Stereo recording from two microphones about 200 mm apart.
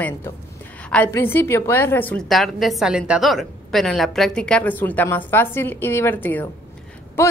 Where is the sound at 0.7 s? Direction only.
5° left (ahead or behind).